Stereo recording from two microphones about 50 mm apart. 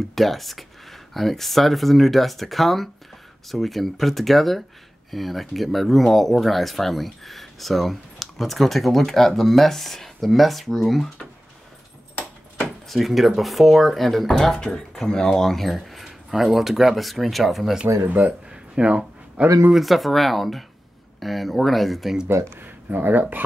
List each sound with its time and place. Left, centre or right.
0.1 s speech: centre
12.8 s speech: centre
18.0 s speech: right
18.5 s a sound: centre
19.7 s speech: centre
22.3 s speech: right
22.6 s speech: right